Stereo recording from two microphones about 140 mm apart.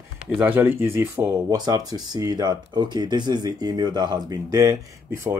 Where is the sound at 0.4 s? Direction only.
15° right (ahead or behind).